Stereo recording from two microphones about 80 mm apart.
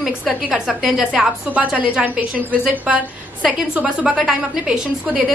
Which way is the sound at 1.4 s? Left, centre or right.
Centre.